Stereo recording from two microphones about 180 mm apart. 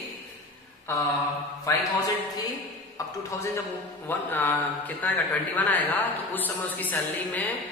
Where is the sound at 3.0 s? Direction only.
20° left (ahead or behind).